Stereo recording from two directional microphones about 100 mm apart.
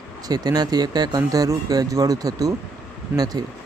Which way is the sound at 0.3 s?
40° right (ahead or behind).